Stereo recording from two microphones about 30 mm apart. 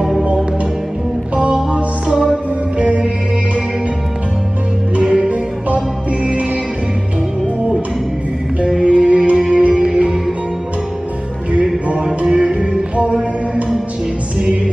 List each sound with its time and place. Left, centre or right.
1.5 s music: right
2.8 s music: right
5.0 s music: right
8.8 s music: right
12.3 s music: right